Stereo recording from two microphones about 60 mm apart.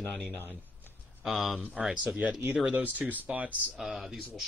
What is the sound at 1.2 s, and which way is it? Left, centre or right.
Speech, centre.